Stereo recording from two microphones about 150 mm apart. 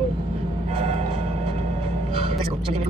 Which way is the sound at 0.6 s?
45° right (ahead or behind).